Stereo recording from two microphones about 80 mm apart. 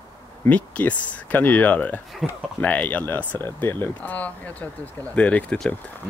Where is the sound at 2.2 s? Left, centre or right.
Centre.